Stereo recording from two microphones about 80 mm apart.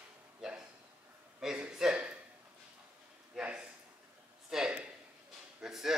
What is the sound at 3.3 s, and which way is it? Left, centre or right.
Speech, centre.